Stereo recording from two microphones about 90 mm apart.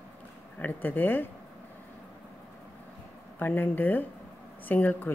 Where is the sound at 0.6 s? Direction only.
20° left (ahead or behind).